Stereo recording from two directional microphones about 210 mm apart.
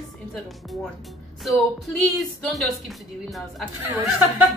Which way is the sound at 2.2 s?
Centre (ahead or behind).